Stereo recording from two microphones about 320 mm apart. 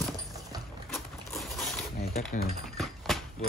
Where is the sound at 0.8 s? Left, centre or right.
Centre.